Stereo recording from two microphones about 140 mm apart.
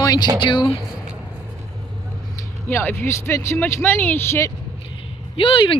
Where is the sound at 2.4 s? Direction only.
15° left (ahead or behind).